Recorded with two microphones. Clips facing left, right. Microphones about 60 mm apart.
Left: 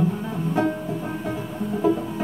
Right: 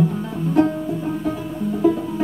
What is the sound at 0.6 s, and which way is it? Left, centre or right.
Music, centre.